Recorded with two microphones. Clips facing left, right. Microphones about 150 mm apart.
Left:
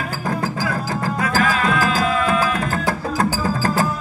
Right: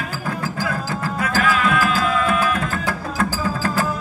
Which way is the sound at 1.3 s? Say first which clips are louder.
Right 1 dB; 35° left (ahead or behind).